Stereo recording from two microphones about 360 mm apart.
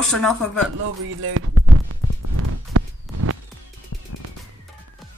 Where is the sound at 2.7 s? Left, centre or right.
Right.